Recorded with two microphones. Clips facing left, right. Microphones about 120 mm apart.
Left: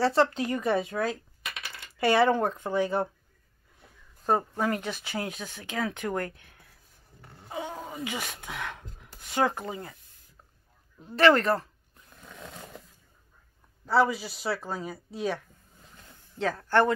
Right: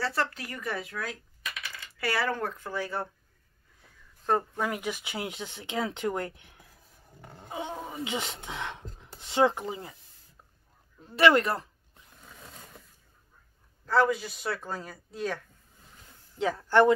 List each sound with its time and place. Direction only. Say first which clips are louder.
0.0 s speech: left 8 dB; 25° left (ahead or behind)
4.3 s speech: left 1 dB; 10° left (ahead or behind)
4.6 s speech: left 2 dB; 10° right (ahead or behind)
11.1 s speech: left 1 dB; 15° right (ahead or behind)
12.3 s a sound: left 6 dB; 80° left
13.8 s a man's voice: left 1 dB; 5° left (ahead or behind)
16.3 s speech: right 2 dB; 15° right (ahead or behind)